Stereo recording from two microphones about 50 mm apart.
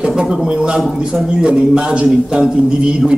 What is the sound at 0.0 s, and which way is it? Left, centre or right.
A man's voice, centre.